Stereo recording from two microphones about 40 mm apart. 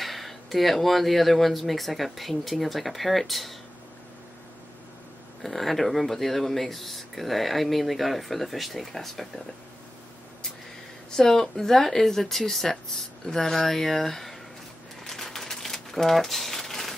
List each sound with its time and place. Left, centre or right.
0.0 s speech: centre
5.4 s speech: centre
11.1 s speech: centre
15.0 s a sound: centre